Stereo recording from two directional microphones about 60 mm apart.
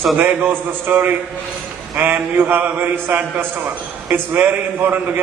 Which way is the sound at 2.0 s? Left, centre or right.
Right.